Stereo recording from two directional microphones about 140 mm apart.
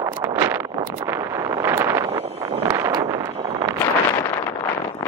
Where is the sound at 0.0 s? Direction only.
20° right (ahead or behind).